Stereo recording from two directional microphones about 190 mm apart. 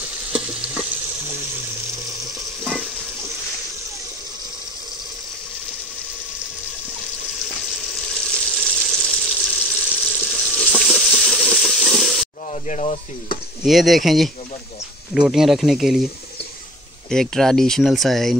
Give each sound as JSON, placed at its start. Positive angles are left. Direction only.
{"t": 7.7, "sound": "frying", "side_deg": 0}
{"t": 12.4, "sound": "speech", "side_deg": 40}
{"t": 13.7, "sound": "speech", "side_deg": 0}
{"t": 17.1, "sound": "speech", "side_deg": 0}